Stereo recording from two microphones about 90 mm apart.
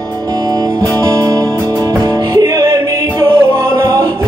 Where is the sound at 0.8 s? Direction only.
40° right (ahead or behind).